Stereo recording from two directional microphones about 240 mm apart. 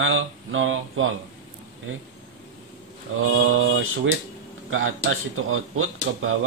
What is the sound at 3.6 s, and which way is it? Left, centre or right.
Speech, right.